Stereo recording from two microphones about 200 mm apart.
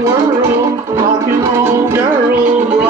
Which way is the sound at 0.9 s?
15° right (ahead or behind).